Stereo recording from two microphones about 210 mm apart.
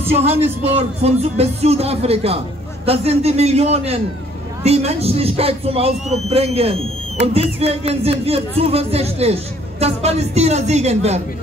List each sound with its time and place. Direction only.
0.0 s music: 30° right (ahead or behind)